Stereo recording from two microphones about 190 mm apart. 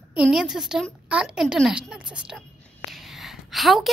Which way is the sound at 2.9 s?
Centre (ahead or behind).